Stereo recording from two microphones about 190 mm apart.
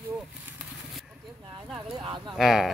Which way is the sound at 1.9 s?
25° right (ahead or behind).